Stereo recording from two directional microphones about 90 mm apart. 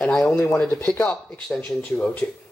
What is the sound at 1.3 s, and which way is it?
Speech, 10° left (ahead or behind).